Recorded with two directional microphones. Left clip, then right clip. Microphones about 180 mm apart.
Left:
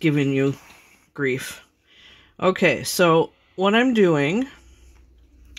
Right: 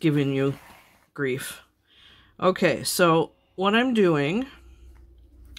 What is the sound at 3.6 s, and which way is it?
Speech, 15° left (ahead or behind).